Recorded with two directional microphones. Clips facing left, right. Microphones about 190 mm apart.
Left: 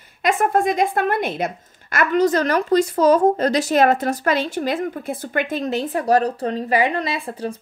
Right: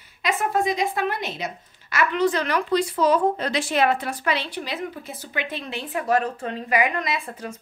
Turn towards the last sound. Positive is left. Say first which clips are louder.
# left 4 dB
turn(degrees=30)  # may be behind; listen again after turning